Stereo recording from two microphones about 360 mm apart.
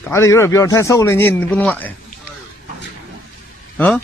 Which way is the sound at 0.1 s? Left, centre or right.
Centre.